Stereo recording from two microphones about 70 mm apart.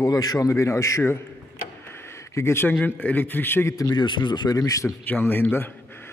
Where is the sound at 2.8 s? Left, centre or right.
Left.